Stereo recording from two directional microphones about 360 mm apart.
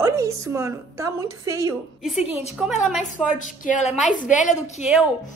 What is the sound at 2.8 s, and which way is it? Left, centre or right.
Speech, centre.